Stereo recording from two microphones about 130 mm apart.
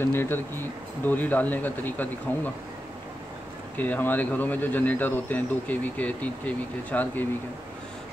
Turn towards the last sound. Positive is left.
turn(degrees=10)  # may be behind; listen again after turning